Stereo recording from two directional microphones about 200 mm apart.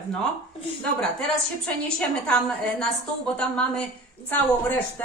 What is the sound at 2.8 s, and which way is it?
A woman's voice, 5° left (ahead or behind).